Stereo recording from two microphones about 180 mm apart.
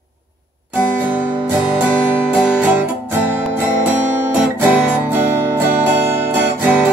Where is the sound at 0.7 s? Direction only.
10° right (ahead or behind).